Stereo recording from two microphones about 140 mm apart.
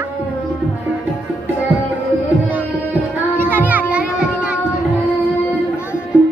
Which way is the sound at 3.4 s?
15° right (ahead or behind).